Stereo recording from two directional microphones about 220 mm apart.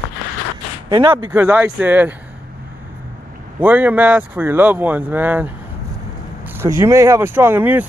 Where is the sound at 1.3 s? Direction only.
10° right (ahead or behind).